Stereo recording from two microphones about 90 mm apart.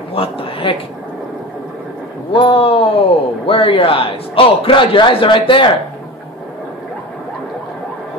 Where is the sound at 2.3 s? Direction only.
85° left; by 5.7 s 65° left (ahead or behind).